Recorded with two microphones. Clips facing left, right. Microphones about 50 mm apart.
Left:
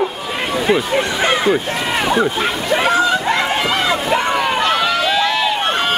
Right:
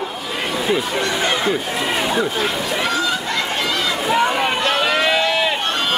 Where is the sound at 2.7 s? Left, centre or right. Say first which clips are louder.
Left 10 dB; left.